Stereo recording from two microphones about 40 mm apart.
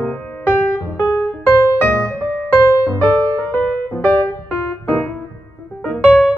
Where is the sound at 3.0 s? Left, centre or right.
Left.